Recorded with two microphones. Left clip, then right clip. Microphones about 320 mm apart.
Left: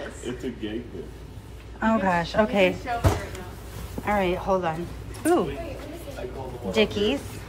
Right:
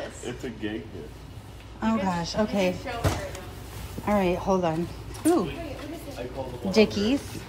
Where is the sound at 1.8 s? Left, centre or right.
Centre.